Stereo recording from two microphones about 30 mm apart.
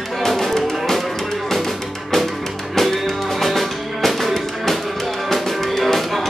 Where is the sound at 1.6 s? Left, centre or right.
Centre.